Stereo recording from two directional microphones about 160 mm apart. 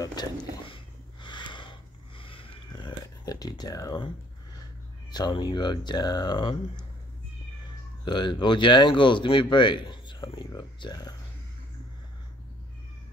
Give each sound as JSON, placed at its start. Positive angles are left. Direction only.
{"t": 0.0, "sound": "a sound", "side_deg": 25}
{"t": 5.1, "sound": "speech", "side_deg": 30}
{"t": 8.0, "sound": "speech", "side_deg": 30}